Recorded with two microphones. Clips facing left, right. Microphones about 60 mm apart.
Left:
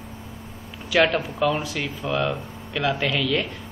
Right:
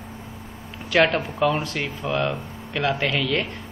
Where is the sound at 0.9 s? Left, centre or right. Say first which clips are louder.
Right 1 dB; centre.